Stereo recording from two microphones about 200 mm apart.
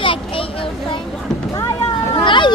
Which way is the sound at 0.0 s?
25° left (ahead or behind).